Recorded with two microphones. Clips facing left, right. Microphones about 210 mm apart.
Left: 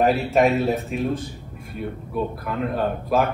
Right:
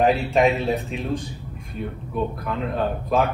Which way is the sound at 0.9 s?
50° left (ahead or behind).